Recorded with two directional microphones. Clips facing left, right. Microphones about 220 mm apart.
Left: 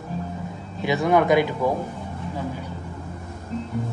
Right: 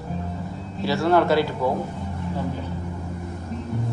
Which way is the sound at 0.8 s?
15° left (ahead or behind).